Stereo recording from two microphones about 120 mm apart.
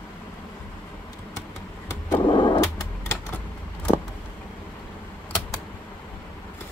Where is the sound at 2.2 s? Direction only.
40° left (ahead or behind).